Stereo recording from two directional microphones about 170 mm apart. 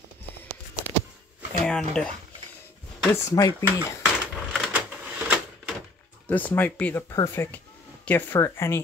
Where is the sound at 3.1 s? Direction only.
20° left (ahead or behind).